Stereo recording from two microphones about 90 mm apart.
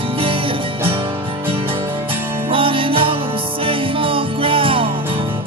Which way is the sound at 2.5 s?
80° right.